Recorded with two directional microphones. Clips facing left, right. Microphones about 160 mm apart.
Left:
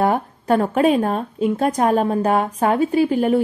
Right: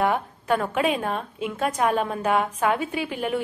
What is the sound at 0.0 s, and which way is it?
A woman's voice, 35° left (ahead or behind).